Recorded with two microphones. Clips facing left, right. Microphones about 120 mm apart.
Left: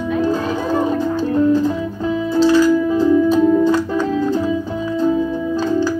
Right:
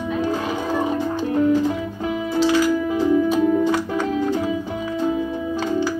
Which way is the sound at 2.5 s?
15° right (ahead or behind).